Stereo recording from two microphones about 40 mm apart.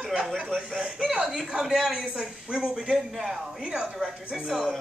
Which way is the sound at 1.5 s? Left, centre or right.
Centre.